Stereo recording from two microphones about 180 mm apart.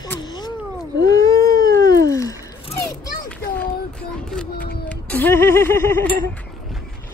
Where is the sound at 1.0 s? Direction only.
20° left (ahead or behind).